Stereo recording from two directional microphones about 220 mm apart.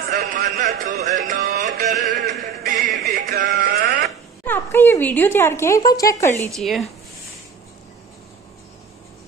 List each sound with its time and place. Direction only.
0.1 s a sound: 35° right (ahead or behind)
0.6 s music: 35° right (ahead or behind)
2.1 s music: 45° right (ahead or behind)
4.5 s a sound: 10° left (ahead or behind)
5.8 s speech: 15° left (ahead or behind)
6.5 s speech: centre (ahead or behind)